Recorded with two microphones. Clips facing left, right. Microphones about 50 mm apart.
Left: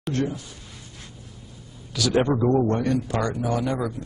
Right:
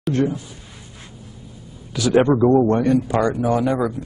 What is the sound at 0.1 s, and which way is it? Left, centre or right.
Speech, centre.